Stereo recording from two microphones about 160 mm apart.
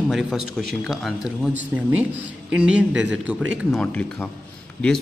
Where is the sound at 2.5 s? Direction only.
5° right (ahead or behind).